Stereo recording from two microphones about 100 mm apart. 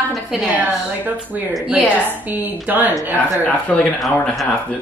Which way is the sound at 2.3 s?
15° right (ahead or behind).